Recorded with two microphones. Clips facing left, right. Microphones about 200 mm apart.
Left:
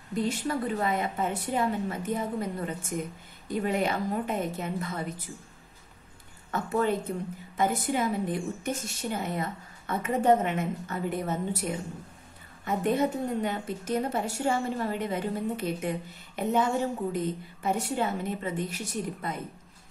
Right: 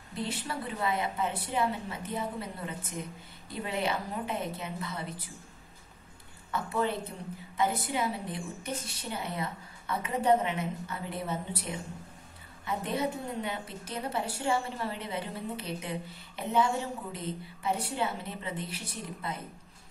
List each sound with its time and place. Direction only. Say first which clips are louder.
0.1 s a woman's voice: left 7 dB; 45° left (ahead or behind)
6.5 s a woman's voice: left 4 dB; 45° left (ahead or behind)